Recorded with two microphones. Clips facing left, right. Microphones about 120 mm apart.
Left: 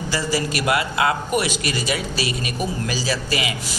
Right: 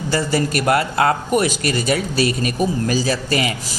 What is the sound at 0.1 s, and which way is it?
A man's voice, 50° right (ahead or behind).